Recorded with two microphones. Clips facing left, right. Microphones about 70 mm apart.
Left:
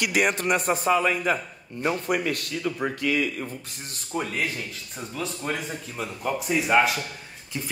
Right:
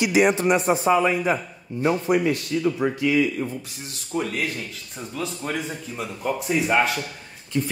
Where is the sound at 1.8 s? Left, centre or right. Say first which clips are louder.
Right 4 dB; left.